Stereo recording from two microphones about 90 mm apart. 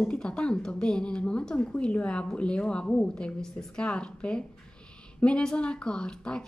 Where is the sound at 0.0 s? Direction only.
10° left (ahead or behind).